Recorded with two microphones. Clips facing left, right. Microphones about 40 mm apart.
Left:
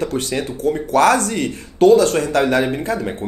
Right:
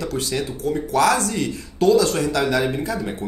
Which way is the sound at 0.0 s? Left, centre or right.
Left.